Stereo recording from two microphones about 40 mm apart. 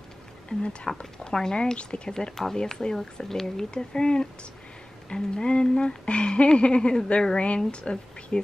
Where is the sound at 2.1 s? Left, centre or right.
Centre.